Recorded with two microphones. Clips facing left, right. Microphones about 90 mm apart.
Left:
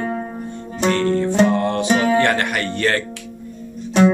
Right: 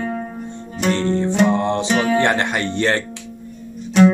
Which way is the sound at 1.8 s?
25° left (ahead or behind).